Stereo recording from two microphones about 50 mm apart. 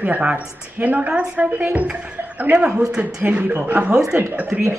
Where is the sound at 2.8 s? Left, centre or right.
Centre.